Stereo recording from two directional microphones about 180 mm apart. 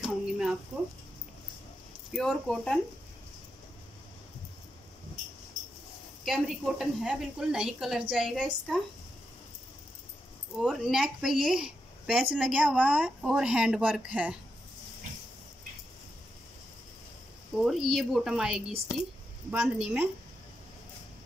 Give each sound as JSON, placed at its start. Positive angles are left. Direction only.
{"t": 0.0, "sound": "a sound", "side_deg": -5}
{"t": 2.1, "sound": "a woman's voice", "side_deg": 5}
{"t": 6.2, "sound": "a woman's voice", "side_deg": 0}
{"t": 10.6, "sound": "a woman's voice", "side_deg": 0}
{"t": 17.6, "sound": "a woman's voice", "side_deg": 0}